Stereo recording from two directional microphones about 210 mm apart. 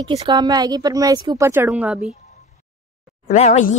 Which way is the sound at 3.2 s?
35° left (ahead or behind).